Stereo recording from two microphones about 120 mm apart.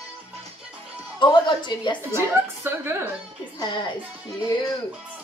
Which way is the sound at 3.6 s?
40° left (ahead or behind).